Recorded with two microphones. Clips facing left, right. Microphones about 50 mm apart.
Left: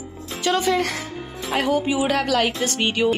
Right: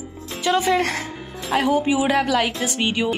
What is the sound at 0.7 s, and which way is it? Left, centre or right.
Speech, right.